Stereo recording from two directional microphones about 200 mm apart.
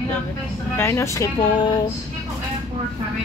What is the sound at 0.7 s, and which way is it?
Speech, 15° left (ahead or behind).